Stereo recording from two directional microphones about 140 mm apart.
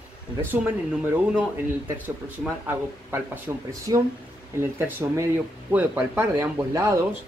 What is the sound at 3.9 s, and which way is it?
Speech, 30° right (ahead or behind).